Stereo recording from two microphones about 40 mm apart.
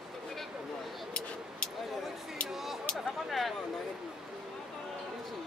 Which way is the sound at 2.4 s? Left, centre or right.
Centre.